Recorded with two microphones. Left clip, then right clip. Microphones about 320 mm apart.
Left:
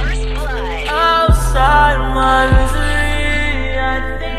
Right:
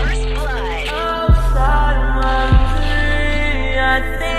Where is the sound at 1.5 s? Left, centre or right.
Left.